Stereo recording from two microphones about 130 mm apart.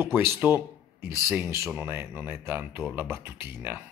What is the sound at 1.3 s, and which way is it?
Speech, 20° right (ahead or behind).